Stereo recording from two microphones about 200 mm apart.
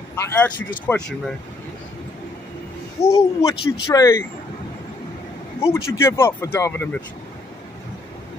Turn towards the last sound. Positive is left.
turn(degrees=10)  # may be behind; listen again after turning